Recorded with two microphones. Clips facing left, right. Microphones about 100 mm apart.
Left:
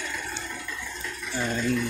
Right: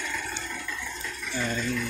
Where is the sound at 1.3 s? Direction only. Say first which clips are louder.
Left 1 dB; 20° left (ahead or behind).